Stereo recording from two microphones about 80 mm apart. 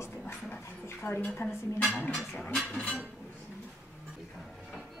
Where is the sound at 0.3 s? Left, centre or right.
Left.